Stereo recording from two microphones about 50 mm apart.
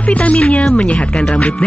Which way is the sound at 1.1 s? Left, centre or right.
Centre.